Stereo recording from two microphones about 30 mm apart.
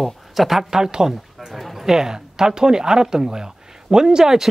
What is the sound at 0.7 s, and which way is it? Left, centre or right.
Speech, centre.